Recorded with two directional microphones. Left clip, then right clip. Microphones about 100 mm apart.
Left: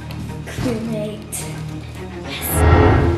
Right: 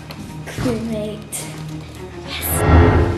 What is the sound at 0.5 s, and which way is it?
Speech, 15° right (ahead or behind).